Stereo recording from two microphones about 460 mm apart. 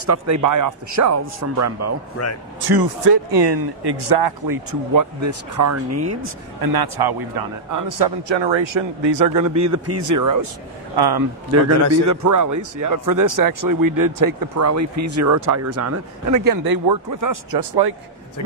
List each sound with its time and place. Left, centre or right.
0.0 s speech: right
2.6 s speech: right
4.6 s speech: right
6.6 s a man's voice: right
8.3 s speech: right
9.6 s speech: right
11.0 s a man's voice: right
11.9 s speech: right